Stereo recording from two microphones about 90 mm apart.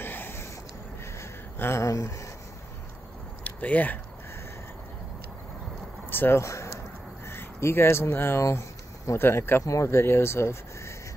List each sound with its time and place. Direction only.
0.0 s a sound: 25° left (ahead or behind)
3.4 s speech: 15° left (ahead or behind)
6.0 s speech: 25° left (ahead or behind)